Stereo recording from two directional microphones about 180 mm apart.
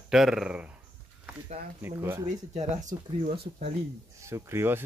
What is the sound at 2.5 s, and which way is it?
Speech, 40° right (ahead or behind).